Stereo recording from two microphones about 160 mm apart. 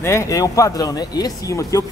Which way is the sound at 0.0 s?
15° left (ahead or behind).